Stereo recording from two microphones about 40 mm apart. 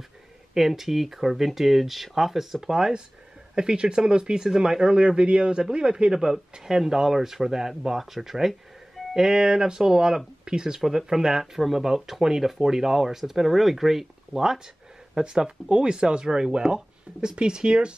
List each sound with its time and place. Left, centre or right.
0.6 s speech: centre
10.8 s speech: centre
15.1 s speech: centre